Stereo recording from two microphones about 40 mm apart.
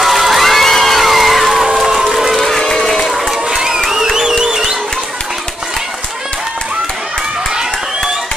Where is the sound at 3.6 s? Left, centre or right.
Centre.